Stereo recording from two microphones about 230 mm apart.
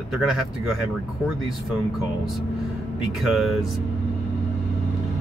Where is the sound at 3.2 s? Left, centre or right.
Centre.